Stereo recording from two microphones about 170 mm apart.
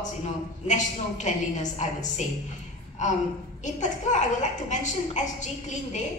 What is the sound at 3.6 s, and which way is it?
A woman's voice, 45° left (ahead or behind).